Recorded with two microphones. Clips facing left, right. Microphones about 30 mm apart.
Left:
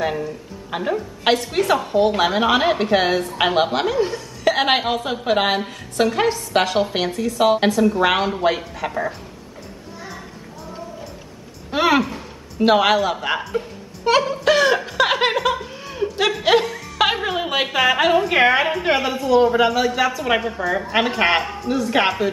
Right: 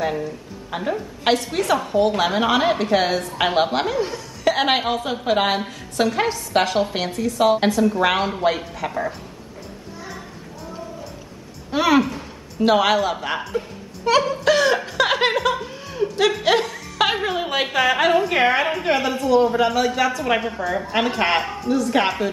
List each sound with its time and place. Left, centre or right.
0.0 s a woman's voice: centre
11.7 s a sound: centre
12.5 s a woman's voice: centre
20.7 s a woman's voice: centre
21.6 s a woman's voice: centre